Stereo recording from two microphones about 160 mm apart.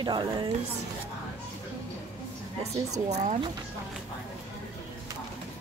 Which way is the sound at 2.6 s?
45° right (ahead or behind).